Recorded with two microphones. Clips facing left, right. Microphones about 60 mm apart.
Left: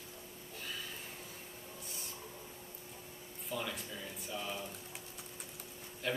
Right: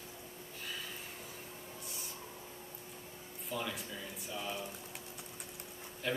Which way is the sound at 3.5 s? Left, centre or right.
Centre.